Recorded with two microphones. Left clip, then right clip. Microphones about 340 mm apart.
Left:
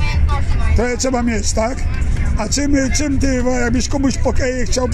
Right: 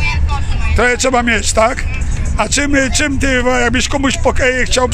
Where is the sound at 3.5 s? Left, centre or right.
Right.